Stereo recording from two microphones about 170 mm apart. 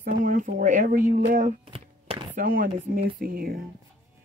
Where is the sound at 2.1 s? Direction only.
35° right (ahead or behind).